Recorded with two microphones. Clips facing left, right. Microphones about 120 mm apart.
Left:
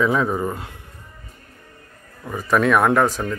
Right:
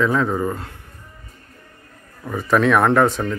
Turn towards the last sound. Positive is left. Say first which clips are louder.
# right 2 dB
turn(degrees=0)  # may be behind; listen again after turning